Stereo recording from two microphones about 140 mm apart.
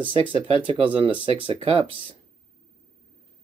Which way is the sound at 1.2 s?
40° right (ahead or behind).